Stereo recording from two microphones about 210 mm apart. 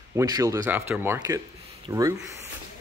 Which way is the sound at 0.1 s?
15° right (ahead or behind).